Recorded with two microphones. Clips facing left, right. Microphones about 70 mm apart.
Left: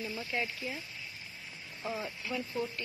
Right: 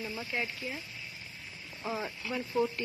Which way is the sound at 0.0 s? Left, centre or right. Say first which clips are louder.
Even; centre.